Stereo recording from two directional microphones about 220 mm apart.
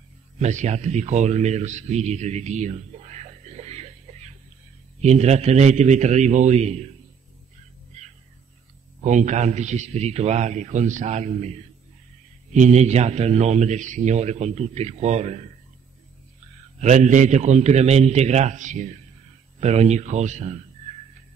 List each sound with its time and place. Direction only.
0.4 s a man's voice: 30° right (ahead or behind)
9.0 s speech: 35° right (ahead or behind)
16.8 s speech: 35° right (ahead or behind)